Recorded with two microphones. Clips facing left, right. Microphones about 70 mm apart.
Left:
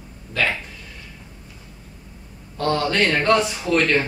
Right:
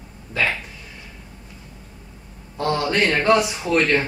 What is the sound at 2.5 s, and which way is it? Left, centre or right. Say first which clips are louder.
Speech: even; centre.